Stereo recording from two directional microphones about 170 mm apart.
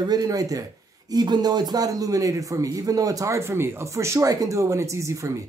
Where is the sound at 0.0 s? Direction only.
25° right (ahead or behind).